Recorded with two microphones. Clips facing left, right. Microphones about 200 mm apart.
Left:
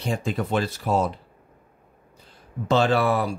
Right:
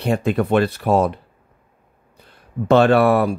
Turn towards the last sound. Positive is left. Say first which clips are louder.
# right 7 dB
turn(degrees=-60)  # may be behind; listen again after turning